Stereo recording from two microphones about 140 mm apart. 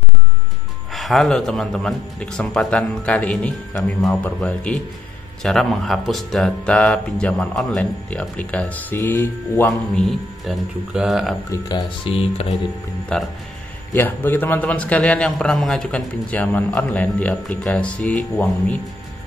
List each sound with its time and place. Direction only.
0.9 s a man's voice: centre (ahead or behind)
10.0 s speech: centre (ahead or behind)
12.0 s speech: 45° left (ahead or behind)
13.1 s a man's voice: 5° left (ahead or behind)